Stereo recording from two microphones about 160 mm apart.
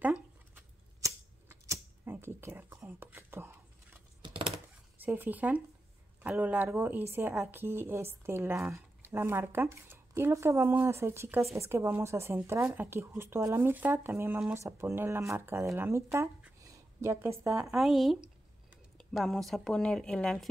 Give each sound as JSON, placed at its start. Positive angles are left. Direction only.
{"t": 0.0, "sound": "a sound", "side_deg": -10}
{"t": 4.2, "sound": "computer keyboard", "side_deg": -30}
{"t": 5.0, "sound": "a woman's voice", "side_deg": -10}